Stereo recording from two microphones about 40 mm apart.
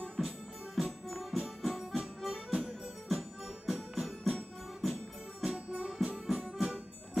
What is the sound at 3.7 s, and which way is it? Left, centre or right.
Music, centre.